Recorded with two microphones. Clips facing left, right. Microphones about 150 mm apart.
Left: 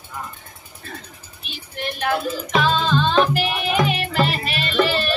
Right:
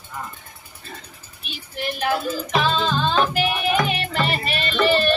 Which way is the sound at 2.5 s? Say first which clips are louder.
Left 2 dB; centre (ahead or behind).